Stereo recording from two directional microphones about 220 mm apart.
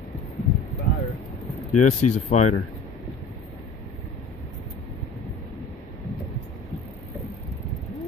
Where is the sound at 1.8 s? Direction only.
30° left (ahead or behind).